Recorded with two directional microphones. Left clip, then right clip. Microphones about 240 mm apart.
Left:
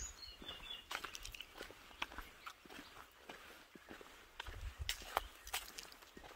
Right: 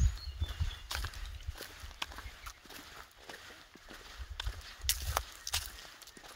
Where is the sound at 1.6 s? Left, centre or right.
Right.